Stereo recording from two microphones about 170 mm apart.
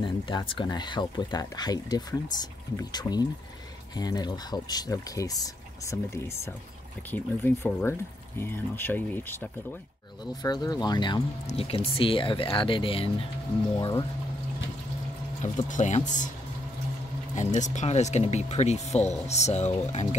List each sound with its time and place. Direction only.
0.0 s speech: 25° left (ahead or behind); by 9.5 s 10° left (ahead or behind)
10.4 s speech: 25° left (ahead or behind)
15.4 s speech: 45° left (ahead or behind)
17.4 s speech: 45° left (ahead or behind)